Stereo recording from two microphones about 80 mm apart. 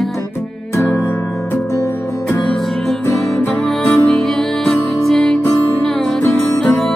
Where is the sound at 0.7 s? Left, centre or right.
Left.